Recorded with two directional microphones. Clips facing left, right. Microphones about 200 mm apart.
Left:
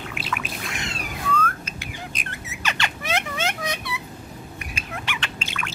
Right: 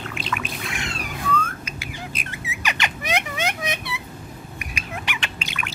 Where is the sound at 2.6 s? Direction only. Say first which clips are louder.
Right 1 dB; 15° right (ahead or behind).